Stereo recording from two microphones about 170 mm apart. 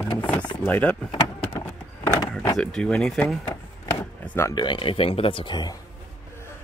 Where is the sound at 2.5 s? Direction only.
5° left (ahead or behind).